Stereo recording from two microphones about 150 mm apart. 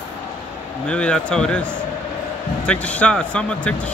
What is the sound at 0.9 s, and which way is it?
Speech, 5° left (ahead or behind).